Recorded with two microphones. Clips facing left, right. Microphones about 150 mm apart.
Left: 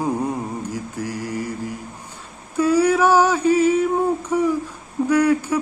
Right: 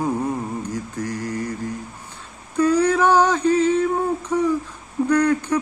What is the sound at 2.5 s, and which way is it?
Mantra, 10° left (ahead or behind).